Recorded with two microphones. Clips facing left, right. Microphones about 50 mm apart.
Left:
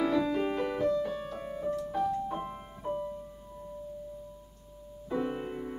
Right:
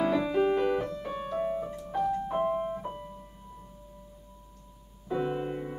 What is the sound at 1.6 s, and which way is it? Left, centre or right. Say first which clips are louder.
Music: even; centre.